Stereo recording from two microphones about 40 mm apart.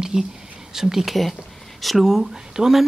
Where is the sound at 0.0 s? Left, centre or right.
Centre.